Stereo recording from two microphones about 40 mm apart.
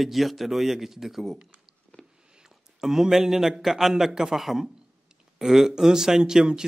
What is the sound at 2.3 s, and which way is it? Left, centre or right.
A man's voice, centre.